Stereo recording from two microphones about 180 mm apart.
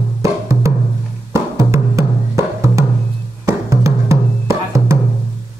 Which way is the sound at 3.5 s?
15° right (ahead or behind).